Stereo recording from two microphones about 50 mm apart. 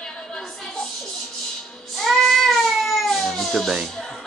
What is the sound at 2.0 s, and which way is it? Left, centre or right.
Cat, centre.